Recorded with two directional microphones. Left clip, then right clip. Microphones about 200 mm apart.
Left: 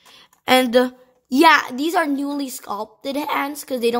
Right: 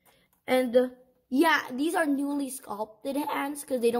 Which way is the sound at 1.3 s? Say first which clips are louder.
Left 11 dB; 30° left (ahead or behind).